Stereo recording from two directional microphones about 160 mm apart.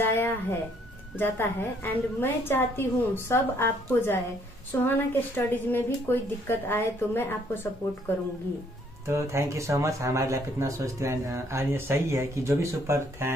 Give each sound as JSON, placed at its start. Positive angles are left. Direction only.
{"t": 0.0, "sound": "a woman's voice", "side_deg": 15}
{"t": 9.0, "sound": "speech", "side_deg": -15}